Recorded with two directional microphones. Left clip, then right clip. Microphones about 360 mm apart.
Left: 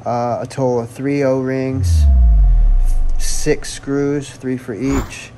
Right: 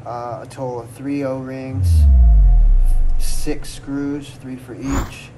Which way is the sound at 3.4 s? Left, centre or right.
Left.